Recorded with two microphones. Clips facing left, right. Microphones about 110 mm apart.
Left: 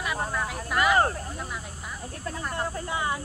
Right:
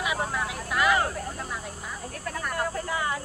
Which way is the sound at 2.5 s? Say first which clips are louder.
Right 2 dB; 25° left (ahead or behind).